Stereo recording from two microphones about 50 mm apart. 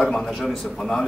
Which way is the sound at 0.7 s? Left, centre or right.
Centre.